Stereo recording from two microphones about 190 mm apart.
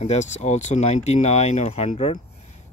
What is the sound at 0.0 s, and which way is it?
Speech, 35° left (ahead or behind).